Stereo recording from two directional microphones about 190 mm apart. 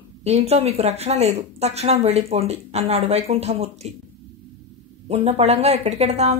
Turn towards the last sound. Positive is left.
turn(degrees=-35)  # may be behind; listen again after turning